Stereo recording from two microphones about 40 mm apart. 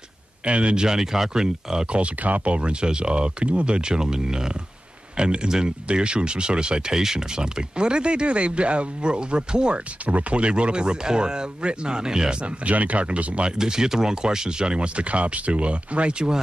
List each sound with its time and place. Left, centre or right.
0.5 s speech: right
0.8 s speech: centre
2.2 s speech: right; by 12.4 s centre
12.6 s speech: right
13.6 s speech: centre